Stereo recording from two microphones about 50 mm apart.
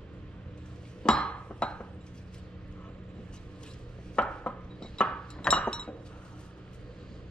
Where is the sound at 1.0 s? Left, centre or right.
Centre.